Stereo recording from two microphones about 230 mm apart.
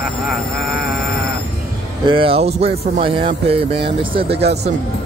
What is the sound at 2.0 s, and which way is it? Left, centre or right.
Speech, right.